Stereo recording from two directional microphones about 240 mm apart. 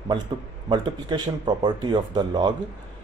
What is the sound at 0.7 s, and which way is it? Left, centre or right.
Speech, centre.